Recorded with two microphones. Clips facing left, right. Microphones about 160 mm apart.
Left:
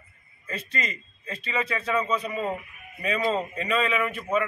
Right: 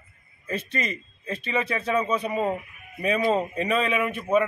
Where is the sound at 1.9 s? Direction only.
20° right (ahead or behind).